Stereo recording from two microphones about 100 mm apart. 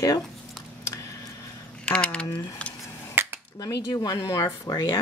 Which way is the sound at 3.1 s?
20° right (ahead or behind).